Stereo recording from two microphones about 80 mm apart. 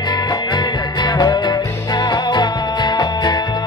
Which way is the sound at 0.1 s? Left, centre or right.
Left.